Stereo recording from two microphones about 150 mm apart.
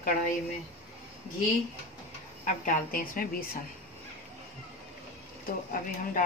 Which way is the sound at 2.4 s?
60° left (ahead or behind).